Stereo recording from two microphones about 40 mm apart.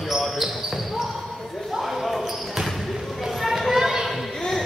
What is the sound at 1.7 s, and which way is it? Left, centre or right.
Basketball bounce, centre.